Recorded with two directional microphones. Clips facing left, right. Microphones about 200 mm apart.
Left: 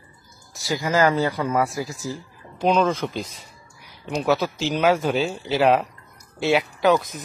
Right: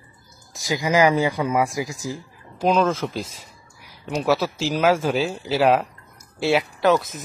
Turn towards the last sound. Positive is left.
turn(degrees=0)  # may be behind; listen again after turning